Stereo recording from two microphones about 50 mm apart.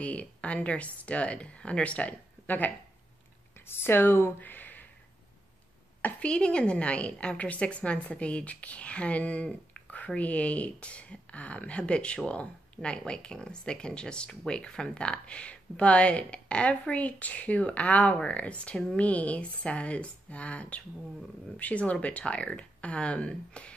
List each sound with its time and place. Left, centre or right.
0.0 s speech: left
2.4 s speech: left
3.6 s speech: left
6.1 s speech: left